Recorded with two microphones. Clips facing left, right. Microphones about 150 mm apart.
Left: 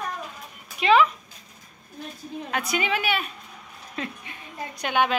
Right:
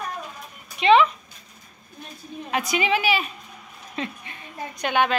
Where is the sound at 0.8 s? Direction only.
5° left (ahead or behind).